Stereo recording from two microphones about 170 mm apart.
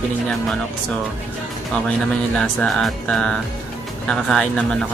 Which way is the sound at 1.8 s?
5° left (ahead or behind).